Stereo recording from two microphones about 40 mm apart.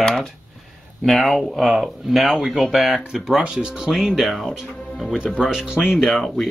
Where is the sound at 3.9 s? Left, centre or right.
Centre.